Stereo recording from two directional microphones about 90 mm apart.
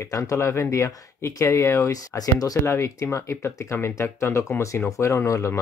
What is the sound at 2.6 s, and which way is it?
Speech, 30° left (ahead or behind).